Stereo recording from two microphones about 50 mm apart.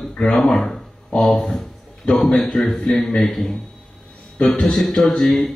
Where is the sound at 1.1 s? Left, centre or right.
Centre.